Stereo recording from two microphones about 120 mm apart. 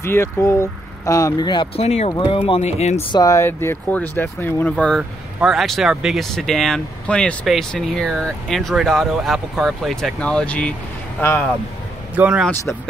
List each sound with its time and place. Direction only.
0.0 s speech: 20° left (ahead or behind)
1.8 s speech: 65° left (ahead or behind)
2.0 s speech: 45° left (ahead or behind)
2.6 s speech: 65° left (ahead or behind)
3.1 s speech: 30° left (ahead or behind); by 5.0 s 10° left (ahead or behind)
5.4 s speech: centre (ahead or behind)
12.2 s speech: 15° right (ahead or behind)